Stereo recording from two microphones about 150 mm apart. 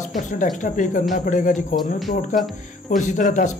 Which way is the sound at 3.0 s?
55° left (ahead or behind).